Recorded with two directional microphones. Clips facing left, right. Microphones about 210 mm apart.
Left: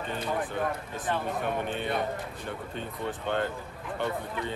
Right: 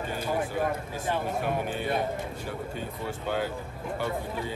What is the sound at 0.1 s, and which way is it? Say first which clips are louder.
Speech: right 1 dB; 10° right (ahead or behind).